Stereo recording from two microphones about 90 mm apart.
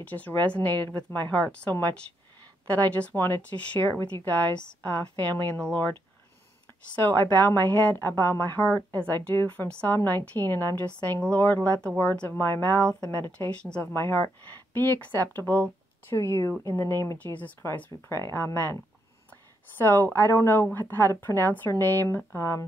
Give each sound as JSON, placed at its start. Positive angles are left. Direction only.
{"t": 0.0, "sound": "speech", "side_deg": 20}
{"t": 7.0, "sound": "speech", "side_deg": 25}
{"t": 9.7, "sound": "speech", "side_deg": 15}
{"t": 13.5, "sound": "speech", "side_deg": 10}
{"t": 13.9, "sound": "speech", "side_deg": 30}
{"t": 17.2, "sound": "speech", "side_deg": 20}
{"t": 19.8, "sound": "speech", "side_deg": 25}